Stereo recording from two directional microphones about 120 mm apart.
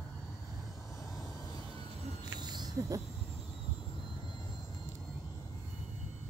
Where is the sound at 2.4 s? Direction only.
35° right (ahead or behind).